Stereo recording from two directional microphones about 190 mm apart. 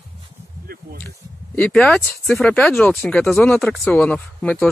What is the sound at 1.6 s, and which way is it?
Speech, 5° left (ahead or behind).